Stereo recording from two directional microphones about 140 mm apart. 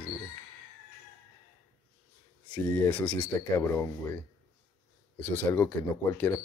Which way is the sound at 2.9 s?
10° left (ahead or behind).